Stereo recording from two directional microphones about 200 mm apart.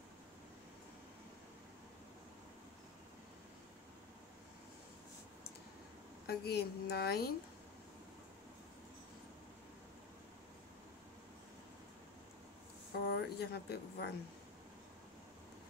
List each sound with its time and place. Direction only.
6.2 s a woman's voice: 55° left (ahead or behind)
13.1 s speech: 55° left (ahead or behind)